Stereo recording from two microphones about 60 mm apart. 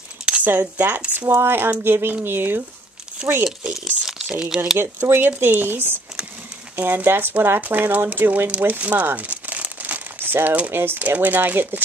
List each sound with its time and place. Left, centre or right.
0.2 s a sound: centre
0.5 s speech: right
3.2 s speech: centre
4.7 s speech: right